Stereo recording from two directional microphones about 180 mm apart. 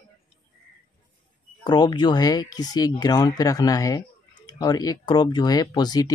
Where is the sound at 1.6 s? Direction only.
25° left (ahead or behind).